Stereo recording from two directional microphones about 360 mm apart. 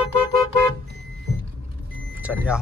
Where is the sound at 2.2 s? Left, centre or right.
Centre.